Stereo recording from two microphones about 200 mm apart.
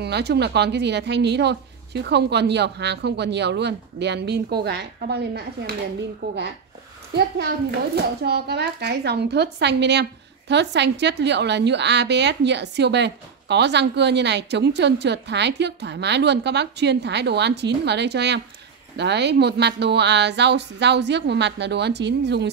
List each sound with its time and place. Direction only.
0.0 s a woman's voice: 55° right (ahead or behind)
7.9 s a woman's voice: 55° right (ahead or behind)